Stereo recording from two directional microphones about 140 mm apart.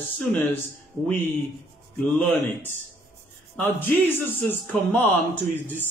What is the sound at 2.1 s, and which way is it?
Speech, 15° left (ahead or behind).